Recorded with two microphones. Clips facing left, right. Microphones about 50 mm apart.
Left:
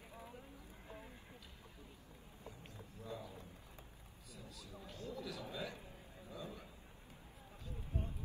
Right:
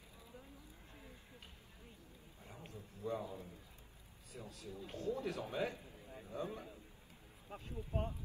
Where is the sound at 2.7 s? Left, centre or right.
Right.